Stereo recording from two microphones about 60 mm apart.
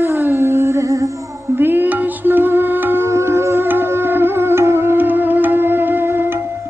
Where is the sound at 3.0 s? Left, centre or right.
Right.